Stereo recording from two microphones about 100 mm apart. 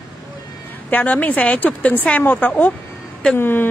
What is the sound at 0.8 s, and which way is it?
A woman's voice, 15° left (ahead or behind).